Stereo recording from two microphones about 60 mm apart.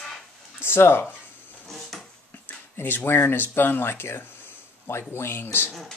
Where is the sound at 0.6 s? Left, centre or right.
Left.